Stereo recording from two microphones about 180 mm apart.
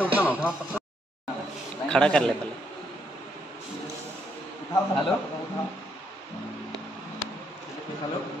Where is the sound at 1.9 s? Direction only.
5° left (ahead or behind).